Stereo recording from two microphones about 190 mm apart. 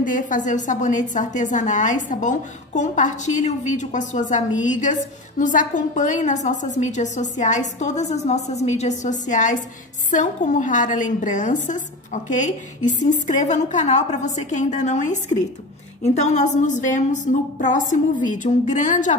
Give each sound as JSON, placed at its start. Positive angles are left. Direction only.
{"t": 0.0, "sound": "a woman's voice", "side_deg": 45}